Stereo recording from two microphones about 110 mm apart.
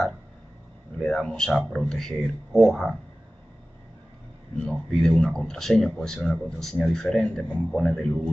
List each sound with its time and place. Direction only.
0.9 s speech: 5° left (ahead or behind)
4.6 s speech: 5° left (ahead or behind)